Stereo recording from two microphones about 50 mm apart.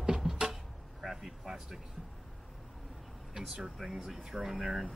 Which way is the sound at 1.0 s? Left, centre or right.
Centre.